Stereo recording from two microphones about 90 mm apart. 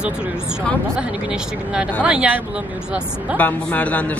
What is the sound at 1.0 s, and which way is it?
Speech, 10° right (ahead or behind).